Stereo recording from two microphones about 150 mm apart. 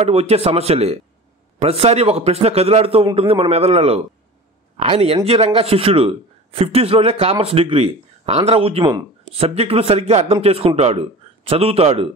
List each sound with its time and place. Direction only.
0.0 s a man's voice: 40° right (ahead or behind)